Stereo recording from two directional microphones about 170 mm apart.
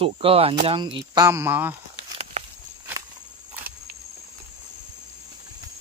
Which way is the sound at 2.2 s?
40° right (ahead or behind).